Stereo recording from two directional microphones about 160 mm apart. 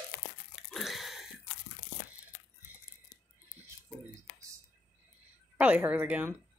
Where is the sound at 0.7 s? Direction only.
Centre (ahead or behind).